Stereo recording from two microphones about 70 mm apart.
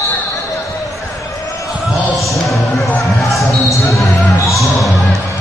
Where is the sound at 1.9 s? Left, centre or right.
Centre.